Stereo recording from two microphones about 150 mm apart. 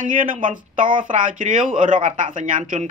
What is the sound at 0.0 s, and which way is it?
Speech, 65° right (ahead or behind).